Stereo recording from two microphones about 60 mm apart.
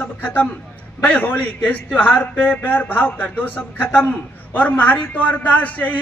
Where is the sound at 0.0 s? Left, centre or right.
Left.